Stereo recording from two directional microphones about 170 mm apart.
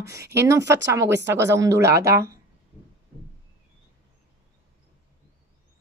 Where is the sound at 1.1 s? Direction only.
90° right.